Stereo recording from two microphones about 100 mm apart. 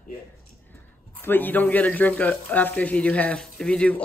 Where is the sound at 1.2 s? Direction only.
20° left (ahead or behind).